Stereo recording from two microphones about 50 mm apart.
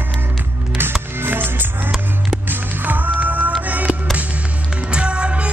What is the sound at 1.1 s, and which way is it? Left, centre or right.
Music, right.